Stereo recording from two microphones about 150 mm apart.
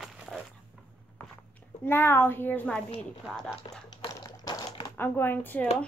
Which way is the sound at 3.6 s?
35° left (ahead or behind).